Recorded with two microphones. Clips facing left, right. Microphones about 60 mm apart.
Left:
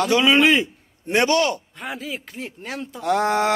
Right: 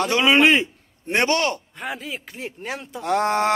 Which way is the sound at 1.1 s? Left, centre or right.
Right.